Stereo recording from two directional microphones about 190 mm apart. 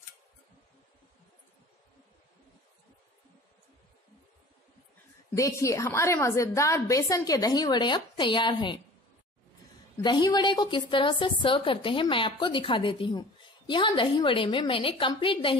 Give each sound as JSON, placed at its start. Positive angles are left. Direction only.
{"t": 5.3, "sound": "a woman's voice", "side_deg": 15}
{"t": 10.0, "sound": "a woman's voice", "side_deg": 20}